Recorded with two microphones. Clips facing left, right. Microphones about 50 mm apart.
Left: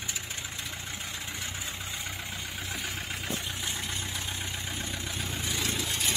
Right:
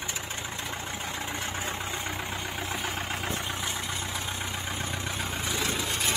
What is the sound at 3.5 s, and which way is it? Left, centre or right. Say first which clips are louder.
Vehicle: right 3 dB; centre.